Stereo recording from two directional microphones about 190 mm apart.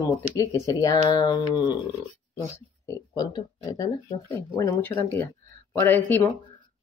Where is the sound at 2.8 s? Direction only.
20° left (ahead or behind).